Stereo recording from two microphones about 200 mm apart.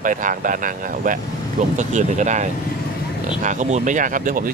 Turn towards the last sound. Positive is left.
turn(degrees=-40)  # may be behind; listen again after turning